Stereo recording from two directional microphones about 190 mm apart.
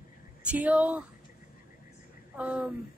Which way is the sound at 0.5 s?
5° right (ahead or behind).